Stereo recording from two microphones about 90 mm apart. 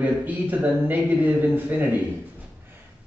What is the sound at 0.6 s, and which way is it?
Speech, 20° right (ahead or behind).